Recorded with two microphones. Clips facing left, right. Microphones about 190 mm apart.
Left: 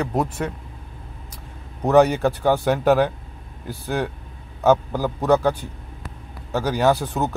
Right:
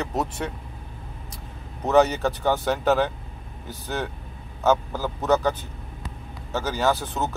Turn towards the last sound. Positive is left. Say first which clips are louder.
# left 4 dB
turn(degrees=15)  # may be behind; listen again after turning